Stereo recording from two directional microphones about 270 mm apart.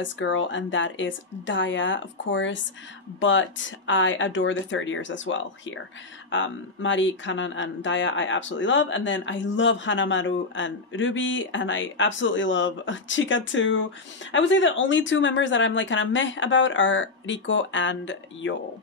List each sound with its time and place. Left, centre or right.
0.0 s speech: left